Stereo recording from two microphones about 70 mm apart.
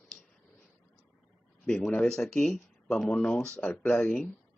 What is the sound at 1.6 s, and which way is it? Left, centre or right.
Speech, centre.